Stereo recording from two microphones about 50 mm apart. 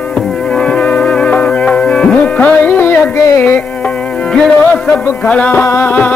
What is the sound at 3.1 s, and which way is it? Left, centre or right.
Music, left.